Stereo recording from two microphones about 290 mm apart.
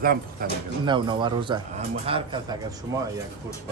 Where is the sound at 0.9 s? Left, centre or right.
Centre.